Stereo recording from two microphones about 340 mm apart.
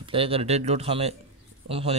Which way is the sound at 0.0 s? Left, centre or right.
Centre.